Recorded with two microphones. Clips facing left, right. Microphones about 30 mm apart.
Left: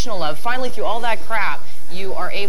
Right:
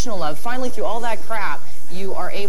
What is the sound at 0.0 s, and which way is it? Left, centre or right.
A woman's voice, left.